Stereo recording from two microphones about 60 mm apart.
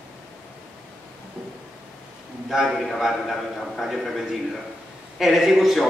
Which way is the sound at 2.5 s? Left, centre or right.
Centre.